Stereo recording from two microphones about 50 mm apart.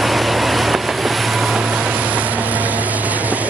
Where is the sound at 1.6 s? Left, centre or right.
Centre.